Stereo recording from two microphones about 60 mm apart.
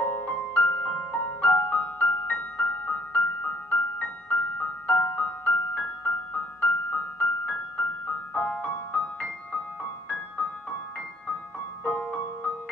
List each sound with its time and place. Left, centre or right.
0.4 s music: centre
1.1 s music: left
11.8 s music: left